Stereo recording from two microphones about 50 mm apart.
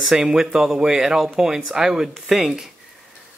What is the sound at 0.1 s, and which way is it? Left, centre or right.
Speech, centre.